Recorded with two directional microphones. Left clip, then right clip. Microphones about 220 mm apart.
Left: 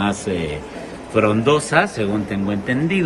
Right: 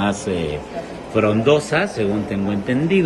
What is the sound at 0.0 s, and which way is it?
A man's voice, centre (ahead or behind).